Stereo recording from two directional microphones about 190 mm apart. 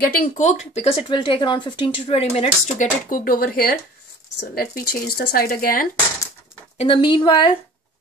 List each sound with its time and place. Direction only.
0.0 s speech: 45° left (ahead or behind)
6.8 s a woman's voice: 25° left (ahead or behind)